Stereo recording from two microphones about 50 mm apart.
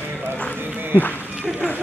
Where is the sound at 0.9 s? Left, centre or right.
Left.